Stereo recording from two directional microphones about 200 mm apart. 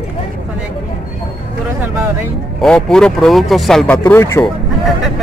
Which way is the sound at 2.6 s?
5° left (ahead or behind).